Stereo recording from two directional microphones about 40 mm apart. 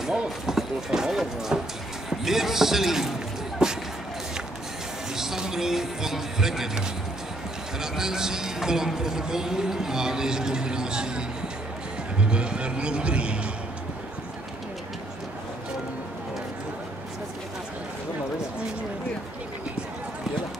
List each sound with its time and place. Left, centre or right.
0.5 s speech: centre
5.1 s speech: centre
7.8 s speech: centre